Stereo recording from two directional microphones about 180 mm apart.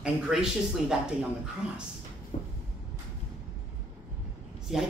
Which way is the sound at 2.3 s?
35° left (ahead or behind).